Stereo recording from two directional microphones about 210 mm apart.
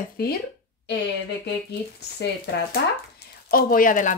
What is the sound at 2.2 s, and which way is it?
Speech, 50° left (ahead or behind).